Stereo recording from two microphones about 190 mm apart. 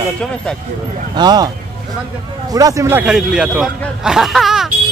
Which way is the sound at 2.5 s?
20° right (ahead or behind).